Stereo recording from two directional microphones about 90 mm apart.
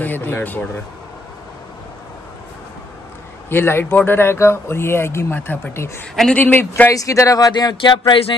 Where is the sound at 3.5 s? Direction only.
25° left (ahead or behind).